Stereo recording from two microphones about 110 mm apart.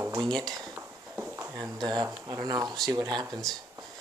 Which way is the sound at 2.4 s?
35° right (ahead or behind).